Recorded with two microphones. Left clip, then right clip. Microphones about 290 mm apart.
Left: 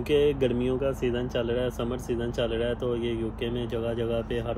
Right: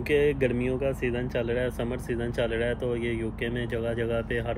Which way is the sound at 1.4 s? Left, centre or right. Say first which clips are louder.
Even; centre.